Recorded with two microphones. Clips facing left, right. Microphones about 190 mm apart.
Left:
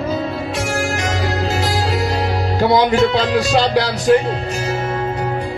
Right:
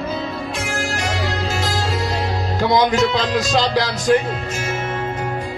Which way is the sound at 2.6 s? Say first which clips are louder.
Left 2 dB; 35° left (ahead or behind).